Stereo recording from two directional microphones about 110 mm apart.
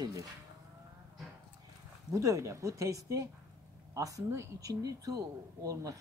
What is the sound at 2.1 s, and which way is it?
Speech, 30° right (ahead or behind).